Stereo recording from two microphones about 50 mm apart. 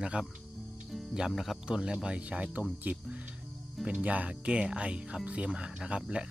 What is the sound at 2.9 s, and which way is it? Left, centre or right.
Speech, right.